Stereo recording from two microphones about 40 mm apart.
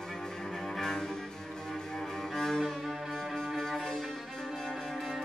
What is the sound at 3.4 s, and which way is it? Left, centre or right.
Music, centre.